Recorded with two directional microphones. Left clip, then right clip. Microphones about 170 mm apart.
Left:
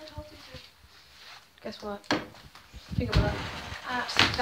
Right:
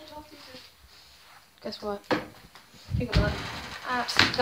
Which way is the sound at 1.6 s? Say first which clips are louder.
Right 4 dB; 25° right (ahead or behind).